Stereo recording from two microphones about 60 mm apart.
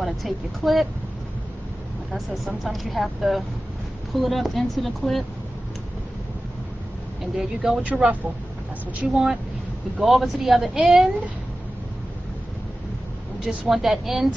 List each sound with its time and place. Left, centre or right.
0.0 s speech: centre
2.1 s speech: centre
7.3 s speech: centre
7.9 s speech: right
9.1 s speech: centre
13.7 s speech: centre